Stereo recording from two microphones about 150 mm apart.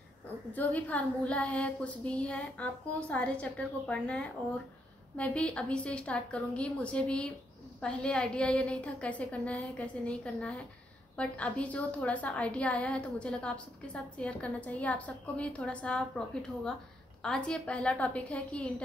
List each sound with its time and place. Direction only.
0.5 s a woman's voice: 10° left (ahead or behind)
17.2 s a woman's voice: 5° left (ahead or behind)